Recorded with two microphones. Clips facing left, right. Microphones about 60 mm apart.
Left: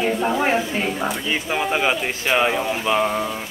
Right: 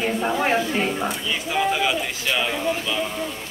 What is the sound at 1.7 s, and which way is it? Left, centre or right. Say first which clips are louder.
Speech: left 2 dB; left.